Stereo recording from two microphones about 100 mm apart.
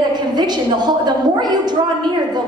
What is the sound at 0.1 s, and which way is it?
A woman's voice, 45° right (ahead or behind).